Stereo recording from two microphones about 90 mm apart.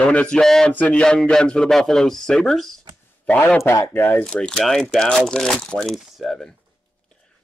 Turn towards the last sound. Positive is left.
turn(degrees=0)  # may be behind; listen again after turning